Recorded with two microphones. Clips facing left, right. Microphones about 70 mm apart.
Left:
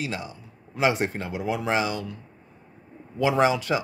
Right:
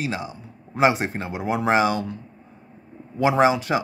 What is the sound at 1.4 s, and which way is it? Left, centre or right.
Speech, right.